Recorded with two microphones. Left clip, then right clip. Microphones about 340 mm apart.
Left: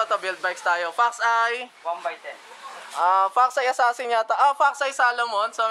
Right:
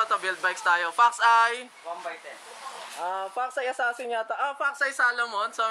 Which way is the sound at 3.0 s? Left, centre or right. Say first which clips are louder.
Left 12 dB; left.